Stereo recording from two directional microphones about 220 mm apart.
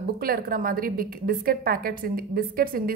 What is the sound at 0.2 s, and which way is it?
A woman's voice, 40° right (ahead or behind).